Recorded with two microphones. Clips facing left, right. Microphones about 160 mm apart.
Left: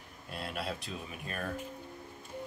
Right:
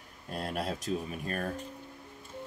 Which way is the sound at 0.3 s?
40° right (ahead or behind).